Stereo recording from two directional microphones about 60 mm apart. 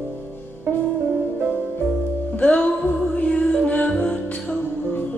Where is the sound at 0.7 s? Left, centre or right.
Right.